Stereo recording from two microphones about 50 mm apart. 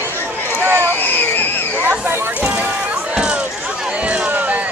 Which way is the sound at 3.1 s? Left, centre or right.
Right.